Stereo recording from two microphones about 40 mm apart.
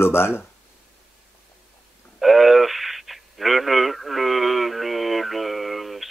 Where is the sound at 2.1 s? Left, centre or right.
Centre.